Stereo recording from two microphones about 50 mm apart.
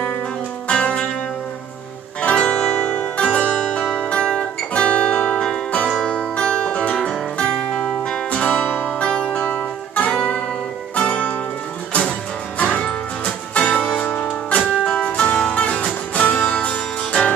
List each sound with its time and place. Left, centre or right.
0.7 s music: left
2.2 s music: left
3.3 s music: centre
4.0 s guitar: centre
5.9 s music: centre
8.6 s music: left
9.0 s music: centre
9.5 s music: left
12.5 s music: left